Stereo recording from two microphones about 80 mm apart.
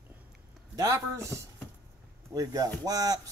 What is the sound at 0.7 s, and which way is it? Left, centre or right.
Speech, right.